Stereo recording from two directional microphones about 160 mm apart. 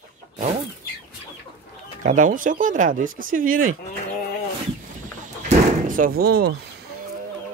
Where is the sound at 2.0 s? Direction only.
55° right (ahead or behind).